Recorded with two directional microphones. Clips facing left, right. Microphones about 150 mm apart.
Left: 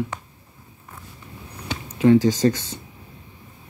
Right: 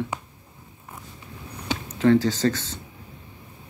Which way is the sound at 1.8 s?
15° left (ahead or behind).